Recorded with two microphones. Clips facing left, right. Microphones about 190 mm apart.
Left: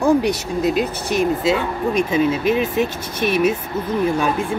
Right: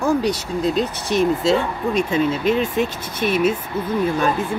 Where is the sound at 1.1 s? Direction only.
5° left (ahead or behind).